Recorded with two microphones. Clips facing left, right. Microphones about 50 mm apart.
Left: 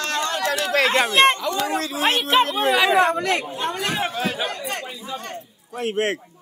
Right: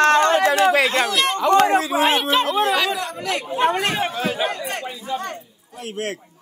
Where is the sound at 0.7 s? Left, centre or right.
Centre.